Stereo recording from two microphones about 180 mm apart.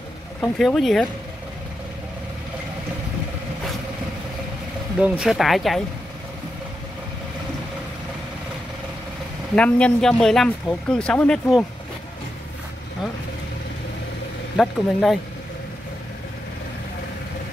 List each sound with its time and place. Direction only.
0.6 s speech: centre (ahead or behind)
5.0 s speech: 5° right (ahead or behind)
9.6 s speech: 5° left (ahead or behind)
14.6 s speech: centre (ahead or behind)